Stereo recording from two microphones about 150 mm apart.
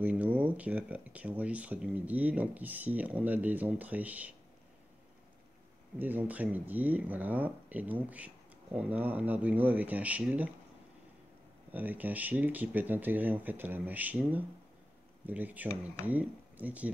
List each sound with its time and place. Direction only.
0.0 s speech: 10° right (ahead or behind)
5.9 s speech: 10° right (ahead or behind)
11.7 s speech: 10° right (ahead or behind)